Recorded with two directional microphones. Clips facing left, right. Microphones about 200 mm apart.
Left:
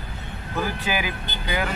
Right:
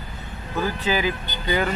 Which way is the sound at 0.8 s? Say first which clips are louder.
Right 4 dB; 15° left (ahead or behind).